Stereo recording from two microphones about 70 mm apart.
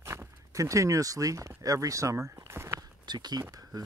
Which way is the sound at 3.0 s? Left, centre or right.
Right.